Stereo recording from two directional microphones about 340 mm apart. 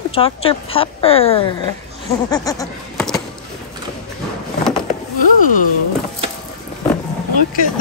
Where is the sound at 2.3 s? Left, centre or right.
Centre.